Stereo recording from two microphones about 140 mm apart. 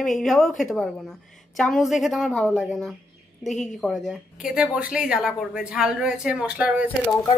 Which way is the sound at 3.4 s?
55° left (ahead or behind).